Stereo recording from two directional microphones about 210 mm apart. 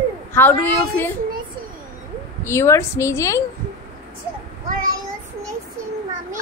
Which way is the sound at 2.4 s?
15° left (ahead or behind).